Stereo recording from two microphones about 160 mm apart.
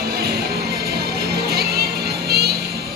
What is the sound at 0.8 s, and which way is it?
Music, 75° right (ahead or behind).